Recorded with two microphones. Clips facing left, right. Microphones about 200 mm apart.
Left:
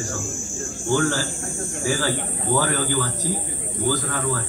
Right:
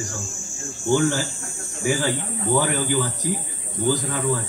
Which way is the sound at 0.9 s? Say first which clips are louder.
Right 2 dB; 20° right (ahead or behind).